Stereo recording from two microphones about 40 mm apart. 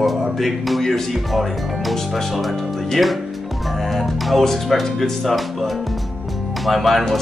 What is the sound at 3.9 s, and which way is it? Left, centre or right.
Speech, centre.